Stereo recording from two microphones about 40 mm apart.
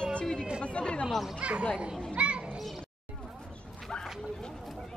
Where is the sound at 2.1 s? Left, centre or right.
Right.